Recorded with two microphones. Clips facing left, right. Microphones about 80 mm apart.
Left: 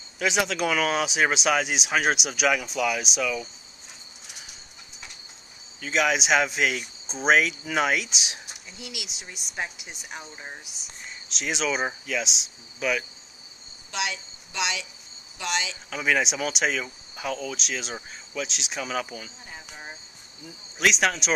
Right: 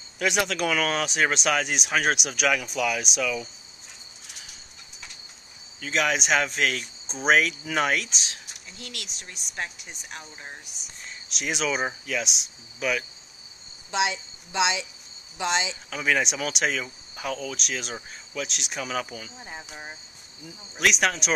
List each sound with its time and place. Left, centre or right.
0.2 s speech: centre
5.8 s speech: centre
13.9 s speech: right
15.9 s speech: centre